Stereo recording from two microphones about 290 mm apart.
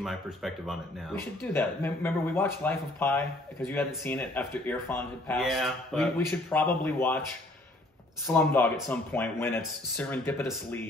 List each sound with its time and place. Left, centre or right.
0.0 s speech: centre
8.3 s speech: centre